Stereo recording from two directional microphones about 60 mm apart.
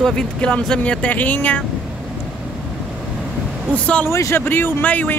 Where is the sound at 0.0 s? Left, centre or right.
Centre.